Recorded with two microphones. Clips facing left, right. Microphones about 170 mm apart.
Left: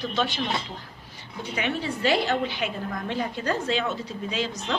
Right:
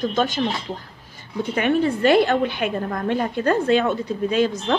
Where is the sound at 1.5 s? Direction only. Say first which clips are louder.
Right 9 dB; 55° right (ahead or behind).